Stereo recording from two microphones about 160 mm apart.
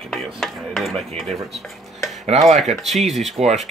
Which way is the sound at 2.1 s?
45° right (ahead or behind).